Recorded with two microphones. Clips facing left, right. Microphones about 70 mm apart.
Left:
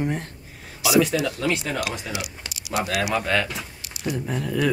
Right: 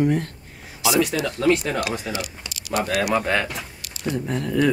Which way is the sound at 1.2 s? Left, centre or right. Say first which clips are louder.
Right 4 dB; centre.